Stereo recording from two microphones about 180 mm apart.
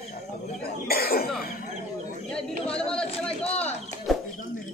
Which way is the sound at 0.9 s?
55° left (ahead or behind).